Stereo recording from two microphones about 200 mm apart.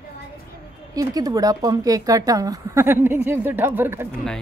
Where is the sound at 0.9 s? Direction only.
20° right (ahead or behind).